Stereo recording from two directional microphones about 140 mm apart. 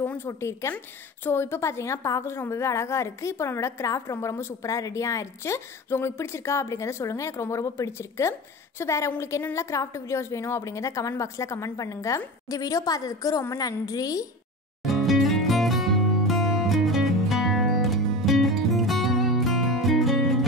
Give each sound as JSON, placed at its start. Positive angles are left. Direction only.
{"t": 0.0, "sound": "a woman's voice", "side_deg": 15}
{"t": 14.8, "sound": "music", "side_deg": 0}